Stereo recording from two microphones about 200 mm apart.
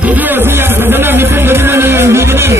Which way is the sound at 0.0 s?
10° right (ahead or behind).